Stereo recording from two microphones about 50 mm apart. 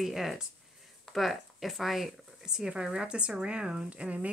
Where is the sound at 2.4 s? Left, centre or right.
Centre.